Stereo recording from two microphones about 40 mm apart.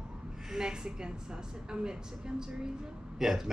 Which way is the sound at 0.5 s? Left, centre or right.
Centre.